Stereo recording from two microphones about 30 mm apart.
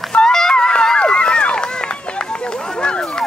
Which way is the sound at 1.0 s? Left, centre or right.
Left.